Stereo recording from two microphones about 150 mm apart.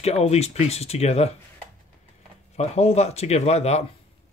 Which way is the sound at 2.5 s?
45° left (ahead or behind).